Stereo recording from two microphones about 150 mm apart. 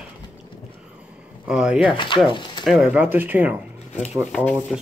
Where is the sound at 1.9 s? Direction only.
35° left (ahead or behind).